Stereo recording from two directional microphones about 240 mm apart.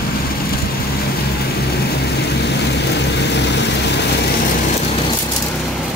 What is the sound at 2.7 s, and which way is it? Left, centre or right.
Vehicle, left.